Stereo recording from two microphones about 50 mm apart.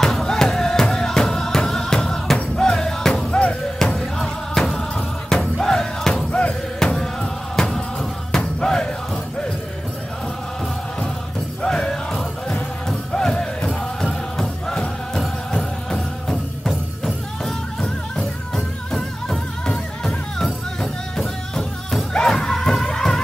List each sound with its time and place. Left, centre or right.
0.0 s music: centre
4.0 s music: centre
11.6 s music: centre